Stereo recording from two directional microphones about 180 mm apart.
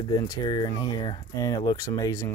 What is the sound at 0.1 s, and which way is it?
Speech, 20° left (ahead or behind).